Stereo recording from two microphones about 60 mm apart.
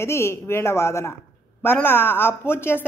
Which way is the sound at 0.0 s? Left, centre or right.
Left.